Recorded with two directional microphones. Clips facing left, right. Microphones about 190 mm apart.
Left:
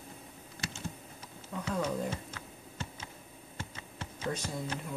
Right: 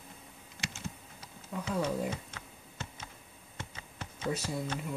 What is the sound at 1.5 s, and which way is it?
Speech, 10° right (ahead or behind).